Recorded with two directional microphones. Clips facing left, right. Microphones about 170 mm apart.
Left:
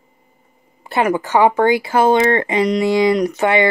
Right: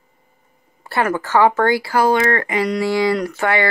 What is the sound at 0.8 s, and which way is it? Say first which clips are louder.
Speech: left 3 dB; 15° left (ahead or behind).